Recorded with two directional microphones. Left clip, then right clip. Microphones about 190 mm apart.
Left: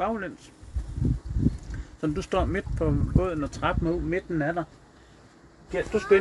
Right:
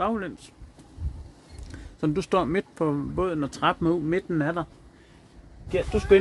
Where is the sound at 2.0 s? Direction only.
40° right (ahead or behind).